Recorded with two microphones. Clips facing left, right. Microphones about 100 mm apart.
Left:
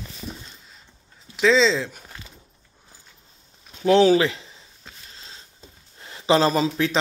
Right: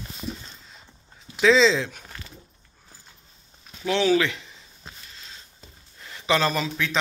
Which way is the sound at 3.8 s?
40° left (ahead or behind).